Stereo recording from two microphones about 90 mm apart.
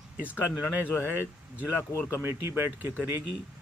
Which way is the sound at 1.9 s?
30° left (ahead or behind).